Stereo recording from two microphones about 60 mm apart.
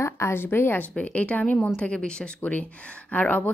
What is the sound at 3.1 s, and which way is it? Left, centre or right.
Speech, left.